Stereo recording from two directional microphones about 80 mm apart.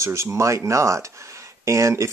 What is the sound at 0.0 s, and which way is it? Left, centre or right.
Speech, right.